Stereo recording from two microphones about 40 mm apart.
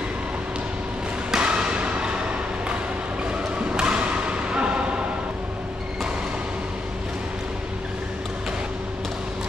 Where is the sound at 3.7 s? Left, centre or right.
Right.